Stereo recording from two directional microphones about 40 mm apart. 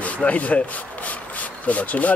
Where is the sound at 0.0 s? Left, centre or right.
Left.